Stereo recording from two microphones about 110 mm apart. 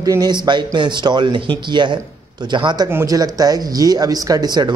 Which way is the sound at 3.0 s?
35° right (ahead or behind).